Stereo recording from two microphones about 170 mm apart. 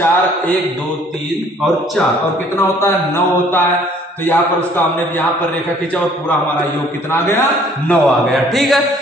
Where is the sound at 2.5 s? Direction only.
15° left (ahead or behind).